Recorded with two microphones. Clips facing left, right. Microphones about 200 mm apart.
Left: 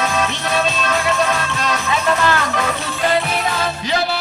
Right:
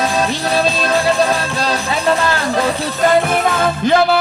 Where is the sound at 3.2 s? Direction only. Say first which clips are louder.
Right 5 dB; 50° right (ahead or behind).